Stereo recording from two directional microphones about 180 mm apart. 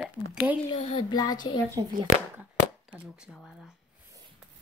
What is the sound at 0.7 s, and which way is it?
Speech, 35° left (ahead or behind).